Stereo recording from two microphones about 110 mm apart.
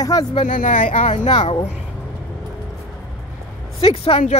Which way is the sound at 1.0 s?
90° left.